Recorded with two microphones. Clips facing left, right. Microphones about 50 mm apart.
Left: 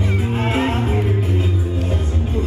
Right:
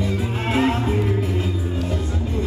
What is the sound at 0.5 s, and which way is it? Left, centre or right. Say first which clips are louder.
Music: right 3 dB; left.